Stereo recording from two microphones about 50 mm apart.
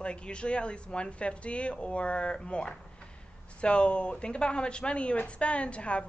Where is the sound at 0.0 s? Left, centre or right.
Left.